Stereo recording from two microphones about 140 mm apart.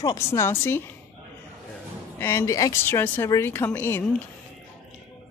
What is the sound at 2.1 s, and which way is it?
A woman's voice, 20° left (ahead or behind).